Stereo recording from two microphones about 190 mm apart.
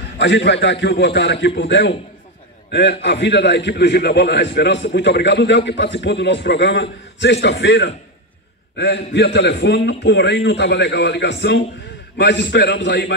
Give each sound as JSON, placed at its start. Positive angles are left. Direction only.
{"t": 0.2, "sound": "a man's voice", "side_deg": 70}